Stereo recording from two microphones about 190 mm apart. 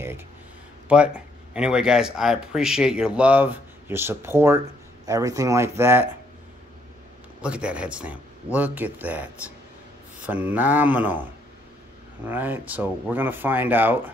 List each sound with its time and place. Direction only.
0.8 s speech: 5° right (ahead or behind)
7.4 s speech: 5° right (ahead or behind)
12.3 s speech: 10° right (ahead or behind)